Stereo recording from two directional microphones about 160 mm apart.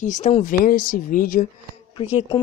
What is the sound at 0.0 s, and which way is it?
Speech, 50° left (ahead or behind).